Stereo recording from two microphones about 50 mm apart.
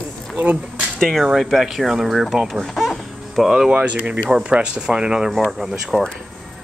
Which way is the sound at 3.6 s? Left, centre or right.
Right.